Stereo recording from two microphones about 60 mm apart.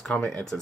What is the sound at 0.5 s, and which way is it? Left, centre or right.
Speech, left.